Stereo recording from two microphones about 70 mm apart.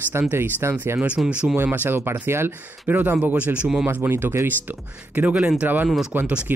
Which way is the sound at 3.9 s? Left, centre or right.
Right.